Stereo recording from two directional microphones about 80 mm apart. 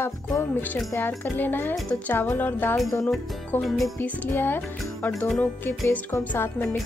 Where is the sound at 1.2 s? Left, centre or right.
Left.